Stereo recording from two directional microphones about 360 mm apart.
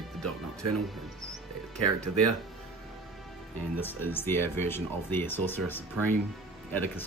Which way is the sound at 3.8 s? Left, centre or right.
Centre.